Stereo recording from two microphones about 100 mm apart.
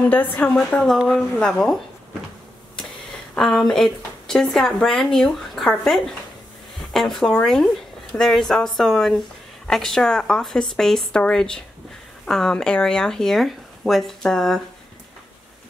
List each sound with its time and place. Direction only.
0.1 s a woman's voice: 20° left (ahead or behind)
3.3 s a woman's voice: 5° left (ahead or behind)